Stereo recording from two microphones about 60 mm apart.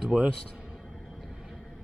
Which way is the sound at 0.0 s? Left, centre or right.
Centre.